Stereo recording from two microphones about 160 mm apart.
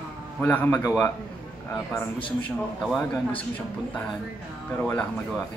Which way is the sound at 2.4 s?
5° left (ahead or behind).